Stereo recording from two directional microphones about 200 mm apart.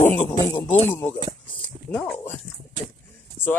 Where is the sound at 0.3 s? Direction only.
20° left (ahead or behind).